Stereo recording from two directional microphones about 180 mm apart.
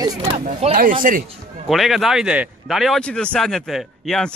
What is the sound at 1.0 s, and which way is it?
Speech, 50° right (ahead or behind).